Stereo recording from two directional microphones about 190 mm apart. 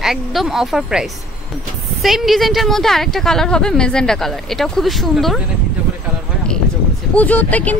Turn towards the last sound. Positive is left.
turn(degrees=10)  # may be behind; listen again after turning